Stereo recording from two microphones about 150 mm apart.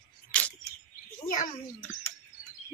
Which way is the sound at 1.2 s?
60° left (ahead or behind).